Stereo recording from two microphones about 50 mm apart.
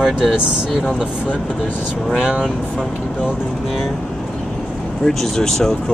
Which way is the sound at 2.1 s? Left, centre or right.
Centre.